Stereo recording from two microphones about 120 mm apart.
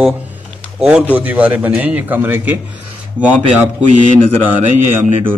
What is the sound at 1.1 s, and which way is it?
A man's voice, 15° right (ahead or behind).